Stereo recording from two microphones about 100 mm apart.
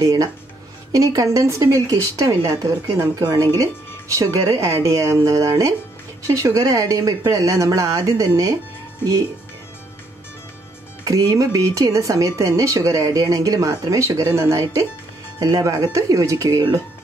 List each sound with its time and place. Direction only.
0.0 s speech: 35° right (ahead or behind)
11.1 s speech: 35° right (ahead or behind)